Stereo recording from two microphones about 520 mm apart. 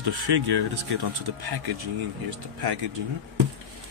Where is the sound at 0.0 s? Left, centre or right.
Right.